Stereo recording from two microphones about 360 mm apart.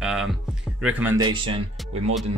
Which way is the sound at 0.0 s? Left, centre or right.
Centre.